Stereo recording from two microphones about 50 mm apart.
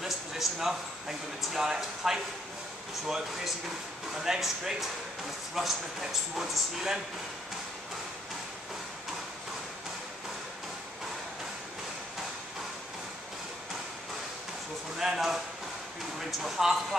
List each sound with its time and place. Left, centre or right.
0.0 s speech: centre
4.2 s speech: centre
15.0 s speech: centre
16.4 s speech: centre